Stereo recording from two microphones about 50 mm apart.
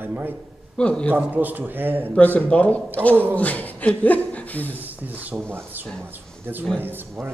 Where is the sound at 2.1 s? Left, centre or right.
Left.